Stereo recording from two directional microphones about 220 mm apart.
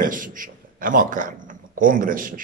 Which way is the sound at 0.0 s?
40° right (ahead or behind).